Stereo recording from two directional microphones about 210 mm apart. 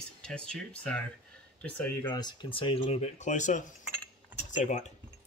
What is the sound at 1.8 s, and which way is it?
Speech, 15° left (ahead or behind).